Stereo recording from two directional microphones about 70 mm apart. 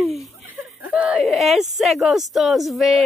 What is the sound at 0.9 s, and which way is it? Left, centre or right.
Whimper, centre.